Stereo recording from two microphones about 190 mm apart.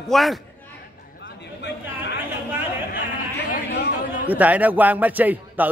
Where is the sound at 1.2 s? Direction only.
65° left (ahead or behind).